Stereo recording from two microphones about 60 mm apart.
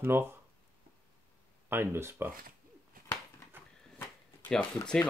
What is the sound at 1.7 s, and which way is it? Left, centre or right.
Speech, right.